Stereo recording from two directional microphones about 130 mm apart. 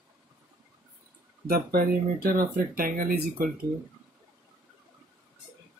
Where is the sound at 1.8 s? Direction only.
90° right.